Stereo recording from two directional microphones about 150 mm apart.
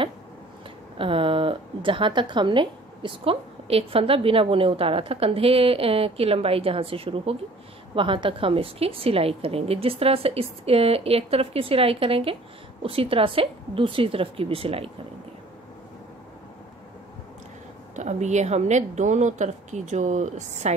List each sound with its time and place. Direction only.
0.9 s speech: 35° right (ahead or behind)
17.9 s a woman's voice: 50° right (ahead or behind)